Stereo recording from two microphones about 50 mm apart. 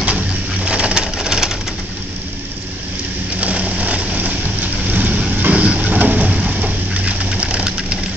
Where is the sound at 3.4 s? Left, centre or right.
Right.